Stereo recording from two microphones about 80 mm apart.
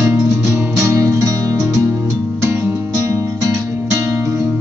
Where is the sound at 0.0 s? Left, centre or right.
Right.